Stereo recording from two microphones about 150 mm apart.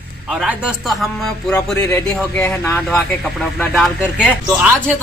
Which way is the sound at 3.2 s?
Centre (ahead or behind).